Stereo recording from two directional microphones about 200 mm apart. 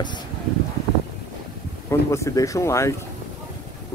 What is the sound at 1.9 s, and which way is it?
Speech, 15° left (ahead or behind).